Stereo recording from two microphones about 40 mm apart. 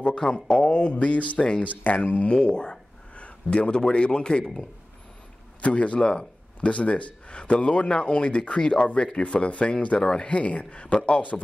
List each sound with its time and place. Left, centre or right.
0.1 s speech: centre
0.7 s speech: left
2.3 s a sound: left
3.3 s speech: left